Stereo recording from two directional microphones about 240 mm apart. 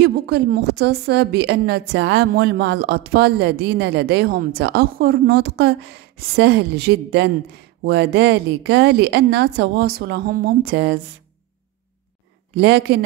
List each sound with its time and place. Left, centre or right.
0.0 s a woman's voice: right
12.5 s a woman's voice: right